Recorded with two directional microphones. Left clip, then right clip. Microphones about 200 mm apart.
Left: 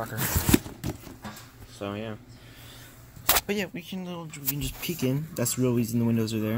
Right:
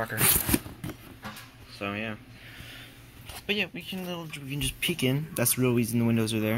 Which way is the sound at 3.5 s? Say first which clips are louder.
Right 1 dB; 20° left (ahead or behind).